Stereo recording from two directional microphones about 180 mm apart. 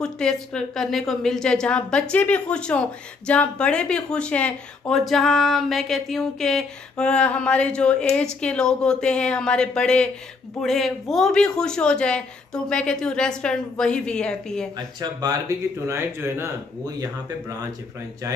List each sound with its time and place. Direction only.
0.0 s a woman's voice: 5° left (ahead or behind)
15.0 s speech: 20° right (ahead or behind)